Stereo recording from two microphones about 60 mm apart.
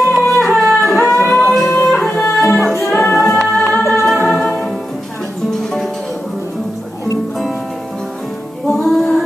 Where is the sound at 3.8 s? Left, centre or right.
Left.